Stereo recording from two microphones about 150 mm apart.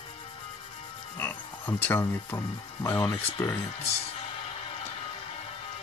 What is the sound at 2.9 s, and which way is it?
Speech, 35° left (ahead or behind).